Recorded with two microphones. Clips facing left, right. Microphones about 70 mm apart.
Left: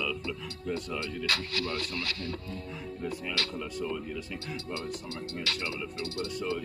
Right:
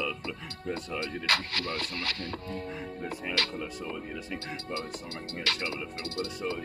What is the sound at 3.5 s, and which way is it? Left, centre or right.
Speech, centre.